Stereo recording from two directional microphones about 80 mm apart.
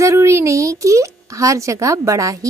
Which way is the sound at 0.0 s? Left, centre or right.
Right.